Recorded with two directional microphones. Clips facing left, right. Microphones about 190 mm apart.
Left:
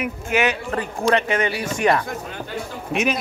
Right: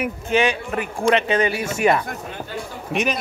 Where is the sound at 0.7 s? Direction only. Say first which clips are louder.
Right 1 dB; 25° right (ahead or behind).